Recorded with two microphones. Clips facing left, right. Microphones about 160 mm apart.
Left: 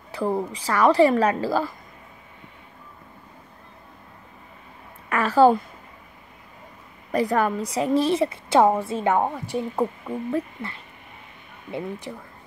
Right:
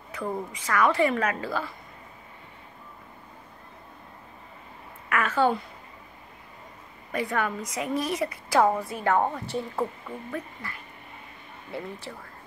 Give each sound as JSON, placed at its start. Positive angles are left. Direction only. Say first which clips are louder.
{"t": 0.1, "sound": "speech", "louder": "left 7 dB", "side_deg": 30}
{"t": 5.1, "sound": "speech", "louder": "left 7 dB", "side_deg": 35}
{"t": 7.1, "sound": "a woman's voice", "louder": "left 6 dB", "side_deg": 35}